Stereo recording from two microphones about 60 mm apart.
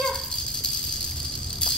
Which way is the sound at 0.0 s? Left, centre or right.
Centre.